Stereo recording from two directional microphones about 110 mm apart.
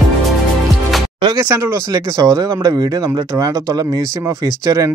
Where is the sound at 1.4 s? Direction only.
25° right (ahead or behind).